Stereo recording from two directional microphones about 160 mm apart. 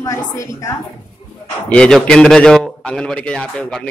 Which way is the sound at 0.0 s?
20° left (ahead or behind).